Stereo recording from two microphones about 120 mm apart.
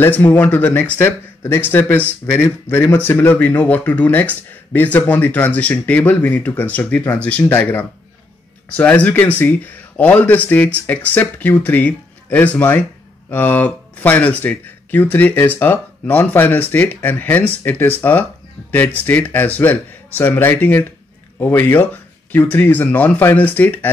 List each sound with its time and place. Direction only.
0.0 s speech: 15° left (ahead or behind)